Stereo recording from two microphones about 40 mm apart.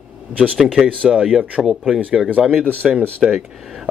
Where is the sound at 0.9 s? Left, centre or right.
Centre.